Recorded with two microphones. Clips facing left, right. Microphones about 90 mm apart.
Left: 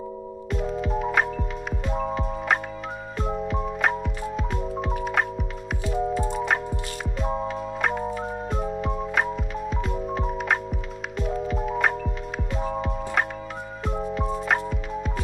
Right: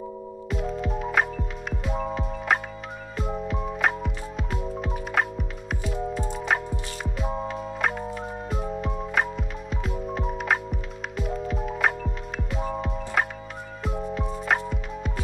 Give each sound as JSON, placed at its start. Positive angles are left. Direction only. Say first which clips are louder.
{"t": 0.5, "sound": "music", "louder": "left 2 dB", "side_deg": 0}